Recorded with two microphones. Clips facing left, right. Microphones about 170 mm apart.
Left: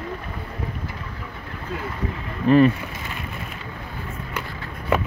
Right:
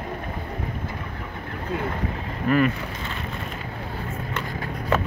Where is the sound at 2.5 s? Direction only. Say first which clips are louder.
Left 6 dB; 25° left (ahead or behind).